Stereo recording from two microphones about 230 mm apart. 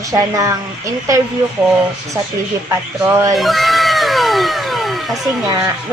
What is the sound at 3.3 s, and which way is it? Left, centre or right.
Cat, centre.